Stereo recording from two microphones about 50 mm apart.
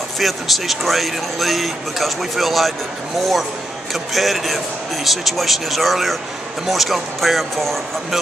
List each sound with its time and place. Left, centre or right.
0.2 s a man's voice: centre